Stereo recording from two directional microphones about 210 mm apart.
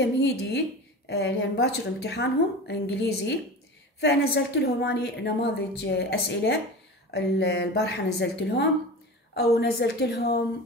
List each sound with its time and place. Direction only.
0.0 s a woman's voice: 55° left (ahead or behind)